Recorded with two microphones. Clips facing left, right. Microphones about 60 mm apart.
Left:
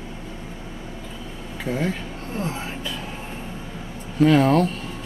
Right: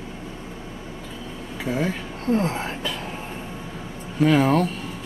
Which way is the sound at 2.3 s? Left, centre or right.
Right.